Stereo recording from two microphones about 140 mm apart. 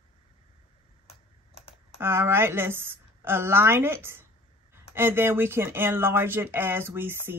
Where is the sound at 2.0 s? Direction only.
15° right (ahead or behind).